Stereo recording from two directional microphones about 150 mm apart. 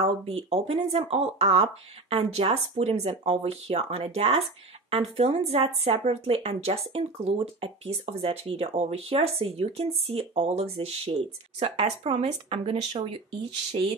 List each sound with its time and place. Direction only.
0.0 s speech: 40° right (ahead or behind)